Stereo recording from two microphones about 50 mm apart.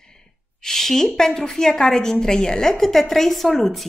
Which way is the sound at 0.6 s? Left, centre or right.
Centre.